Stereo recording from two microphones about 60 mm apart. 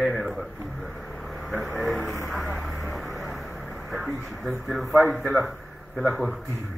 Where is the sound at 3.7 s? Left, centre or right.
Centre.